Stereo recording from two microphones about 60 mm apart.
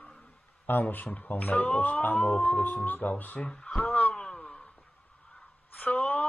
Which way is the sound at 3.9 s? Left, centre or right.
Left.